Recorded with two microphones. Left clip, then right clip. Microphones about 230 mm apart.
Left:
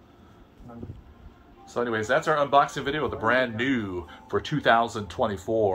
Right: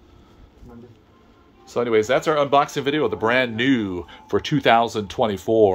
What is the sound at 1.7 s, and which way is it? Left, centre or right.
Speech, right.